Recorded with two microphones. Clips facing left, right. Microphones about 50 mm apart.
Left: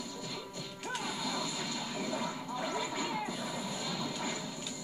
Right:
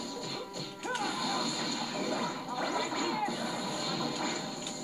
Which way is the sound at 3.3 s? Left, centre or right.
Right.